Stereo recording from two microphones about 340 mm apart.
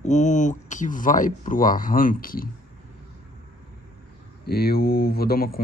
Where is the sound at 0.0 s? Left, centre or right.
Left.